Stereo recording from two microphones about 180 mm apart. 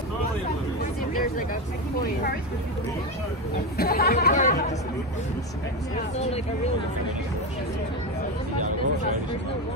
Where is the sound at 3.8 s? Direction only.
60° left (ahead or behind).